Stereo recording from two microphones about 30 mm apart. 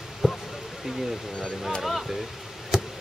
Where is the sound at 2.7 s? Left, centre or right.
Centre.